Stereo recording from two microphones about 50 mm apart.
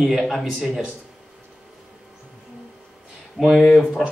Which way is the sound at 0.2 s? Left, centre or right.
Centre.